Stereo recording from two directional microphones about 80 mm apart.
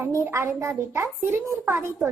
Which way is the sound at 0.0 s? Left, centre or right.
Right.